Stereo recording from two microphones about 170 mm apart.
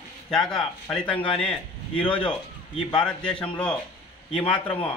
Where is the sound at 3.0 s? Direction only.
5° left (ahead or behind).